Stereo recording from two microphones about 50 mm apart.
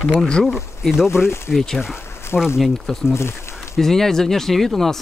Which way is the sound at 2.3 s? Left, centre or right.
Left.